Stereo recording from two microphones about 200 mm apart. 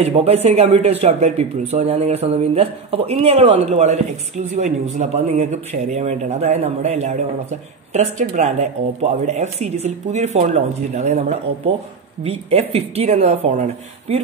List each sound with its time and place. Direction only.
0.0 s speech: 30° right (ahead or behind)